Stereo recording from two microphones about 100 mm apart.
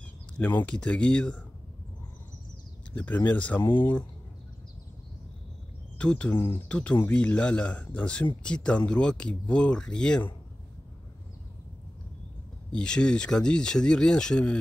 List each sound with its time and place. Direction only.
0.4 s speech: 20° left (ahead or behind)
2.9 s speech: 20° left (ahead or behind)
5.9 s speech: 10° left (ahead or behind)
6.3 s speech: 25° left (ahead or behind)
6.7 s speech: 10° left (ahead or behind)
12.7 s speech: 10° left (ahead or behind)